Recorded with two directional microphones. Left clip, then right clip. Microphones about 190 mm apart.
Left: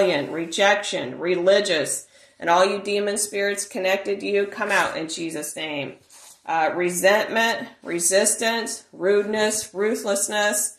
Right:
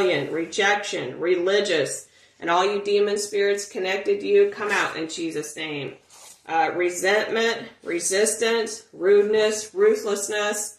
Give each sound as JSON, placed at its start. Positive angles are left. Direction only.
{"t": 0.0, "sound": "speech", "side_deg": 50}